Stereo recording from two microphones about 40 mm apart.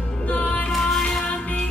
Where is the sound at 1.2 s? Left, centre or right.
Centre.